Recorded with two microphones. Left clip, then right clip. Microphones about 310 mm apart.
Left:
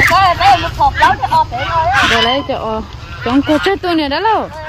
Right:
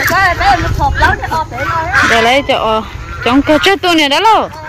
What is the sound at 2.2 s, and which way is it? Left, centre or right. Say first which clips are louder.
Speech: right 5 dB; centre.